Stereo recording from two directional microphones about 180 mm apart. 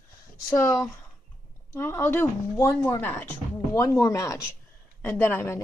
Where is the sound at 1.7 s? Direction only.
15° left (ahead or behind).